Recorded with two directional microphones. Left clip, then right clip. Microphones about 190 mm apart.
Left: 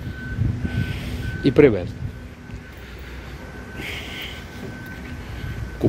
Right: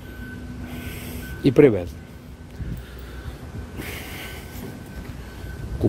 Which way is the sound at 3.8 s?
25° right (ahead or behind).